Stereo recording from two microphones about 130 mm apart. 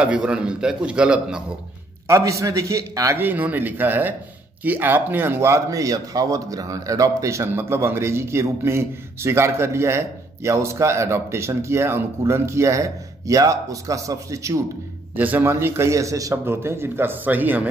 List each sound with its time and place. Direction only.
0.0 s a man's voice: 10° right (ahead or behind)
2.0 s a man's voice: 25° right (ahead or behind)
3.2 s a man's voice: 15° right (ahead or behind)
15.1 s a man's voice: 15° right (ahead or behind)